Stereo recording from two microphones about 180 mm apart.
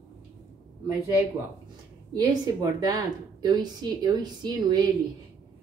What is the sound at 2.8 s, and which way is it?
Speech, 20° right (ahead or behind).